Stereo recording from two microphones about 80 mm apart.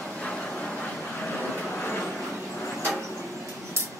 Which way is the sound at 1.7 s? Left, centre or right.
Left.